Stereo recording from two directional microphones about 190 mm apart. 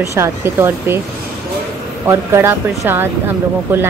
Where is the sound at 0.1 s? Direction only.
15° right (ahead or behind).